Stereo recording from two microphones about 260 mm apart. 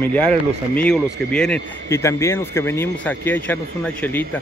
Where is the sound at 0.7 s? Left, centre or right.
Centre.